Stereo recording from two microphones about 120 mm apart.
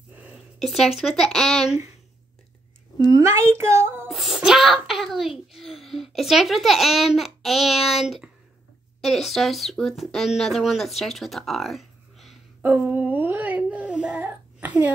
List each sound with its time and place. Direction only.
0.1 s a sound: 10° right (ahead or behind)
0.6 s a child's voice: centre (ahead or behind)
3.1 s speech: 25° right (ahead or behind)
4.1 s a child's voice: centre (ahead or behind)
12.6 s babbling: 15° right (ahead or behind)